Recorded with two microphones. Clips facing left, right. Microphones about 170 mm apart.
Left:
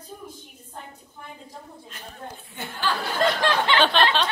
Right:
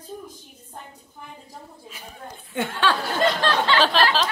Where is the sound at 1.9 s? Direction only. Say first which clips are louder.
Even; 10° right (ahead or behind).